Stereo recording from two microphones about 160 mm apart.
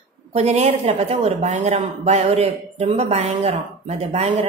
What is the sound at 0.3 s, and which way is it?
A woman's voice, 40° right (ahead or behind).